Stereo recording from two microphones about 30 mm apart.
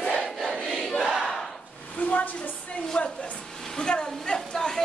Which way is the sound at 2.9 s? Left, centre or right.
Left.